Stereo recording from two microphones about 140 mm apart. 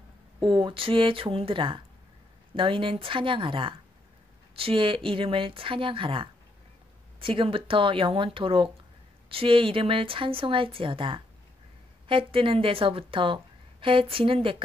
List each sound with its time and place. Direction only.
0.4 s a woman's voice: 35° right (ahead or behind)